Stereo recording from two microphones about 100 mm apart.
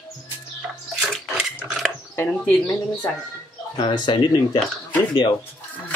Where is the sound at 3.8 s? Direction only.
55° left (ahead or behind).